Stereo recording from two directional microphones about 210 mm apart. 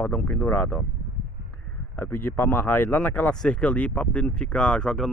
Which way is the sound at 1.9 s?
10° left (ahead or behind).